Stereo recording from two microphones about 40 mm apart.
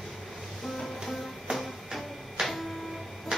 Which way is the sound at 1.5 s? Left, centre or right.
Centre.